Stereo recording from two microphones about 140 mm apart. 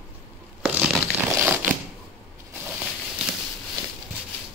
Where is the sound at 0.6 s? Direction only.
Centre (ahead or behind).